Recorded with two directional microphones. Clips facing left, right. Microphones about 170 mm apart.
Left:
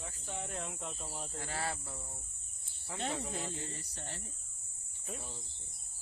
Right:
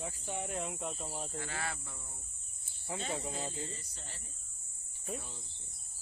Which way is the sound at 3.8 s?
65° left (ahead or behind).